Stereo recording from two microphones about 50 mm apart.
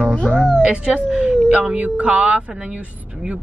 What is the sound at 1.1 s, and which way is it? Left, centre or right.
Speech, right.